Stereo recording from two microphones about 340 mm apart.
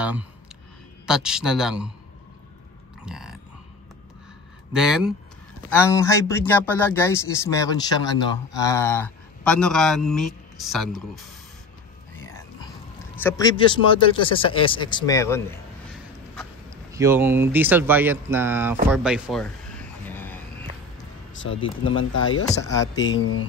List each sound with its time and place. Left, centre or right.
0.0 s speech: centre
3.0 s a sound: centre
4.7 s speech: centre
12.4 s speech: centre
16.7 s speech: centre
18.9 s a sound: centre
21.8 s speech: left